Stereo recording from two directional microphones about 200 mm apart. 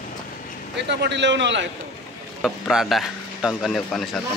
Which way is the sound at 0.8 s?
60° right (ahead or behind).